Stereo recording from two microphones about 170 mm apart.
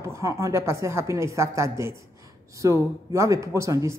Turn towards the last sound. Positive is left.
turn(degrees=-20)  # may be behind; listen again after turning